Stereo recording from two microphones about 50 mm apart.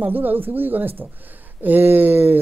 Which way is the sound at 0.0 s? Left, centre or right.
Right.